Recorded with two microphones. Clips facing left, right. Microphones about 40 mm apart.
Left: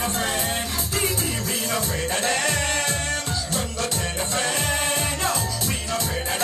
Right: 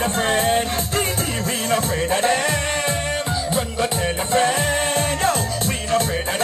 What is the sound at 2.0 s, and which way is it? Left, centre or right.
Music, right.